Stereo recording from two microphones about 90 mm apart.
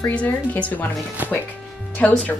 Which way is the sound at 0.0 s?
15° left (ahead or behind).